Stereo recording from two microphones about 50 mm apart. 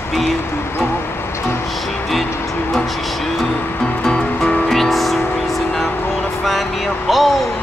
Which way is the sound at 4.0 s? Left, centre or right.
Centre.